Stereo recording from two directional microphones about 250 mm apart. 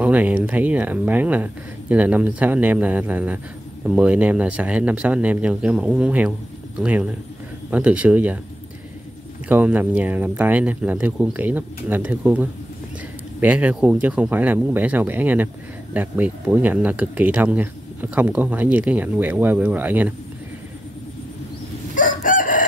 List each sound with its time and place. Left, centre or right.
0.0 s speech: centre
9.5 s speech: centre
21.9 s chicken: left